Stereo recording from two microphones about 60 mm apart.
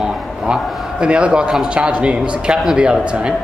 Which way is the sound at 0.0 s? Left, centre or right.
Centre.